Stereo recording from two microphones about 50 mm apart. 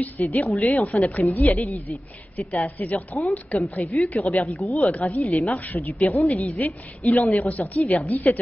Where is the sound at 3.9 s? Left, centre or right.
Left.